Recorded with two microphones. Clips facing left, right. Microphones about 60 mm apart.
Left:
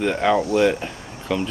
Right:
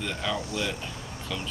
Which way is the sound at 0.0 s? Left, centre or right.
Left.